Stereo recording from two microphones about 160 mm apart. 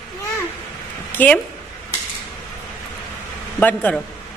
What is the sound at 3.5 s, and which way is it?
Speech, 10° left (ahead or behind).